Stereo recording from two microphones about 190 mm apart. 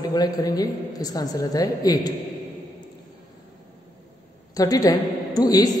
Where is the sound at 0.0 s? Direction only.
20° left (ahead or behind).